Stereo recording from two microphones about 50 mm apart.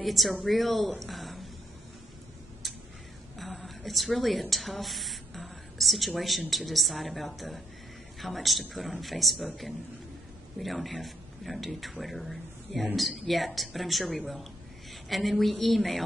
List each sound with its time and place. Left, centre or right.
0.0 s speech: centre
3.3 s a sound: centre
6.5 s speech: centre